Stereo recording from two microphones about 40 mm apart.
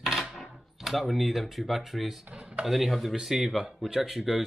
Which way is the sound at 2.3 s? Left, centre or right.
Right.